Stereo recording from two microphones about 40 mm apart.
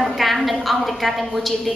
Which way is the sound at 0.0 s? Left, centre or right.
Centre.